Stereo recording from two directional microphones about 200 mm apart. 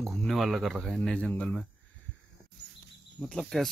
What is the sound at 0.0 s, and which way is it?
Speech, centre (ahead or behind).